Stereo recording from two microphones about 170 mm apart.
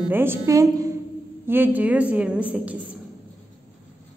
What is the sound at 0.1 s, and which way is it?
A woman's voice, 15° right (ahead or behind).